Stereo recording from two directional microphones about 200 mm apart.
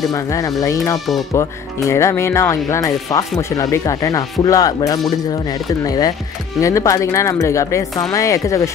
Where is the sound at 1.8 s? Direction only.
15° left (ahead or behind).